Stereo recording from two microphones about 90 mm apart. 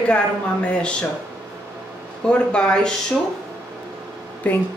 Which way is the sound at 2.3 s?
10° left (ahead or behind).